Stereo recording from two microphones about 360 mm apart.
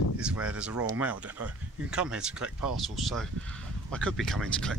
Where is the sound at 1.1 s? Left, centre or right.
Right.